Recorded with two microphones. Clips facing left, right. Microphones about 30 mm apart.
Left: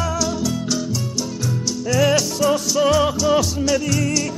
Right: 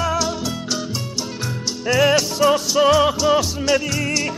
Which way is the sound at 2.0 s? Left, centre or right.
Right.